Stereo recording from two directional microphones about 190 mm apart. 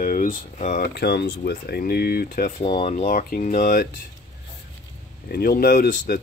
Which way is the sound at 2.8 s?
40° left (ahead or behind).